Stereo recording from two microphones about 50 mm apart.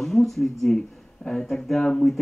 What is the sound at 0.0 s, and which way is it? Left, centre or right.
Speech, centre.